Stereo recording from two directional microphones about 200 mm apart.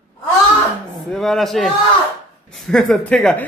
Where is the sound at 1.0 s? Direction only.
Centre (ahead or behind).